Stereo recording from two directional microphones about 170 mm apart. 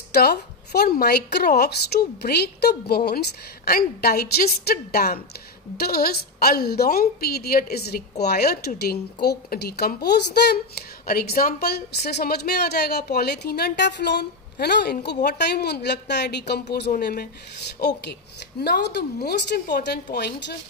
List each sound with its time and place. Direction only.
0.1 s a woman's voice: 70° left (ahead or behind)
11.1 s a woman's voice: 60° left (ahead or behind)
17.7 s a woman's voice: 80° left